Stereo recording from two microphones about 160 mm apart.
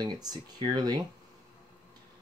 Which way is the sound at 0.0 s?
25° right (ahead or behind).